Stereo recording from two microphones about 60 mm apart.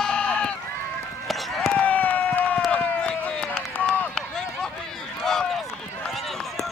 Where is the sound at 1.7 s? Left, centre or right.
Left.